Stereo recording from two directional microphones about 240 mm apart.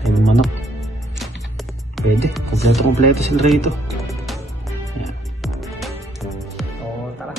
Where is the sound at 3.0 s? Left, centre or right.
Right.